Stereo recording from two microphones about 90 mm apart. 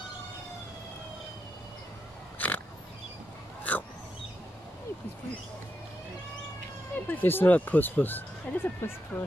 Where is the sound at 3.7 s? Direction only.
20° left (ahead or behind).